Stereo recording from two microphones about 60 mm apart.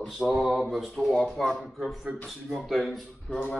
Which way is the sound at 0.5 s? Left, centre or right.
Centre.